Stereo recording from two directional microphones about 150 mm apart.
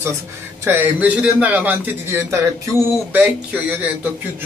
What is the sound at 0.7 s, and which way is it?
Speech, 10° right (ahead or behind).